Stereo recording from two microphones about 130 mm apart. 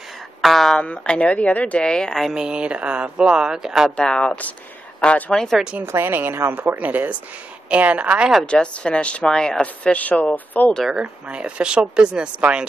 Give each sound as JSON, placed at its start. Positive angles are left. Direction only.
{"t": 0.4, "sound": "speech", "side_deg": 0}
{"t": 3.9, "sound": "speech", "side_deg": 5}
{"t": 5.6, "sound": "speech", "side_deg": -10}
{"t": 8.5, "sound": "speech", "side_deg": 5}
{"t": 10.8, "sound": "speech", "side_deg": -5}